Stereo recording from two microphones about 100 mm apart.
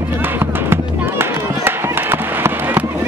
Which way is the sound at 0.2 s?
25° right (ahead or behind).